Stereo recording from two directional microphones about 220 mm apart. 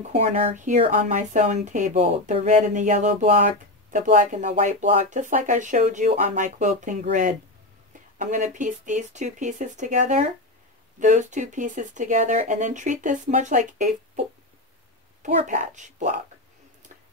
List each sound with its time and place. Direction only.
0.1 s speech: 30° right (ahead or behind)
15.2 s speech: 35° right (ahead or behind)